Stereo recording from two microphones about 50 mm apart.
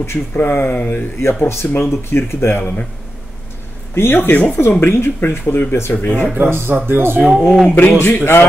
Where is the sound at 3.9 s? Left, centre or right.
Left.